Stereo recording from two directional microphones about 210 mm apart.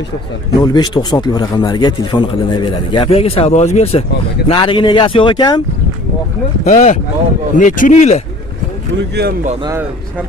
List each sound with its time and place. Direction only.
0.6 s a man's voice: 20° left (ahead or behind)
6.6 s speech: 35° left (ahead or behind)